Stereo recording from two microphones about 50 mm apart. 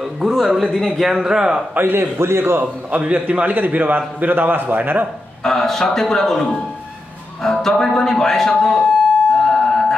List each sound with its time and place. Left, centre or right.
0.0 s a sound: centre
0.6 s a man's voice: centre
1.8 s a man's voice: right
2.6 s a man's voice: right
5.4 s speech: centre
9.4 s a sound: centre